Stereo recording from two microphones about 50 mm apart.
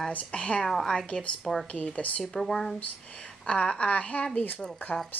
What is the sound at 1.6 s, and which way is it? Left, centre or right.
Speech, left.